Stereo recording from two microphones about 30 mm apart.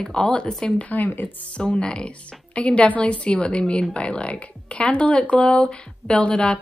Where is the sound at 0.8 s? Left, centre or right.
Left.